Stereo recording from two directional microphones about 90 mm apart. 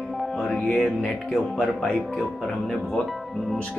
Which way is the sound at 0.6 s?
15° left (ahead or behind).